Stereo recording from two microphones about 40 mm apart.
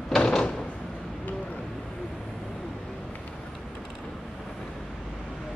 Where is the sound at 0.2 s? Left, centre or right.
Centre.